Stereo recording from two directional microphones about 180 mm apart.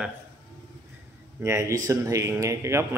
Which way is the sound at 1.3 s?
15° right (ahead or behind).